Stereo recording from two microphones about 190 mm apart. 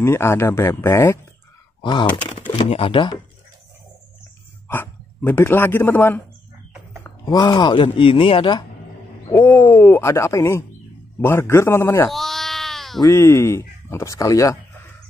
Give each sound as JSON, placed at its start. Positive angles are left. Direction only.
{"t": 0.0, "sound": "speech", "side_deg": 15}
{"t": 1.8, "sound": "speech", "side_deg": 25}
{"t": 4.6, "sound": "a man's voice", "side_deg": 10}
{"t": 9.3, "sound": "speech", "side_deg": 10}
{"t": 12.1, "sound": "baby cry", "side_deg": 0}
{"t": 13.0, "sound": "speech", "side_deg": 15}